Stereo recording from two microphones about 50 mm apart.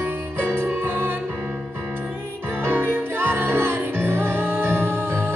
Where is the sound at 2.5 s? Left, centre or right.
Right.